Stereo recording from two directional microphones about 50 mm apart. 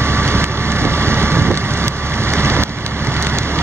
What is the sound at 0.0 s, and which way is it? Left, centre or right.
Vehicle, right.